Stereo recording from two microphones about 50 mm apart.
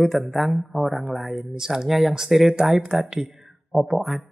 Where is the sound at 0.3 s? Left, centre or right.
Centre.